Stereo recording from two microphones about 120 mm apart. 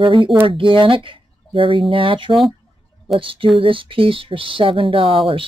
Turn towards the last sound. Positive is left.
turn(degrees=-50)  # may be behind; listen again after turning